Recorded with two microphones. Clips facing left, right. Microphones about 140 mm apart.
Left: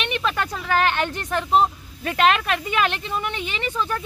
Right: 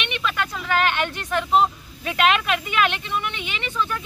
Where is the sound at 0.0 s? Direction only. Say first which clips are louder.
Left 2 dB; 35° left (ahead or behind).